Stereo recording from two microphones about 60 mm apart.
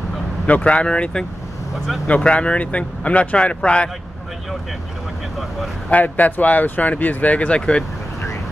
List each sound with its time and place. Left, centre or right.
0.5 s speech: left
5.9 s speech: left